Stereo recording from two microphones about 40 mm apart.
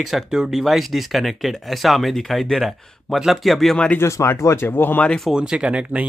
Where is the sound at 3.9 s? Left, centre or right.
Left.